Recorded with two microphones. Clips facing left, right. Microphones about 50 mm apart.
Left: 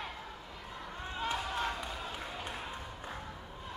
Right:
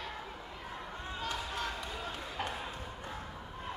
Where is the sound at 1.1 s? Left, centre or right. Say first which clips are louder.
Left 3 dB; left.